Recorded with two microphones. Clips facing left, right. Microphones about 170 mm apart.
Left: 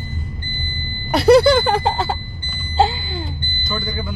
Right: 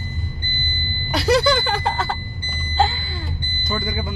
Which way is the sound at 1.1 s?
55° left (ahead or behind).